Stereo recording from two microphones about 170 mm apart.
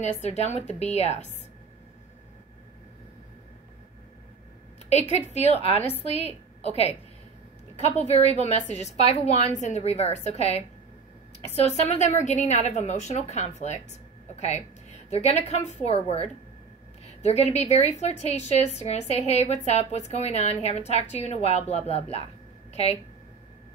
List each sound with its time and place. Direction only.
0.0 s a woman's voice: 40° left (ahead or behind)
4.8 s a woman's voice: 40° left (ahead or behind)